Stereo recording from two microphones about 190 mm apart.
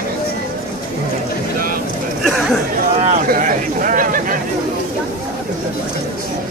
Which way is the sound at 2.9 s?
30° right (ahead or behind).